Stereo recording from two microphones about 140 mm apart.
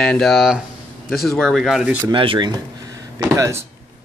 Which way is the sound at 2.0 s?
35° right (ahead or behind).